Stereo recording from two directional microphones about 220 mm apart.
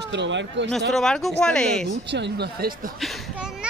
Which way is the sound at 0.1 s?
55° right (ahead or behind).